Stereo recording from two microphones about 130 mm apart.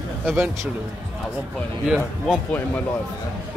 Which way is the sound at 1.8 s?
5° right (ahead or behind).